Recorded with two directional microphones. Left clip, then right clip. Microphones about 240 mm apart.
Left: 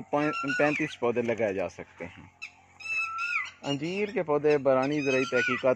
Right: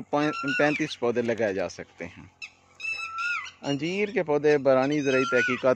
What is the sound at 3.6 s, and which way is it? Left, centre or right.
Speech, centre.